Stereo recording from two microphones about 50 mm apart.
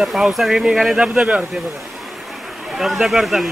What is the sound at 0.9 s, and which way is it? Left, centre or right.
Speech, right.